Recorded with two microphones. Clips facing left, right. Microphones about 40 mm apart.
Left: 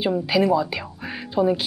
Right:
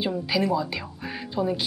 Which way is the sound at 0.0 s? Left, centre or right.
Centre.